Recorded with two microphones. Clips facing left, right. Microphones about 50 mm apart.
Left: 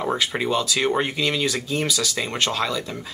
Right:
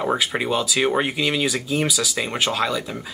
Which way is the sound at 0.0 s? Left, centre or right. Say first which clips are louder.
Right 1 dB; centre.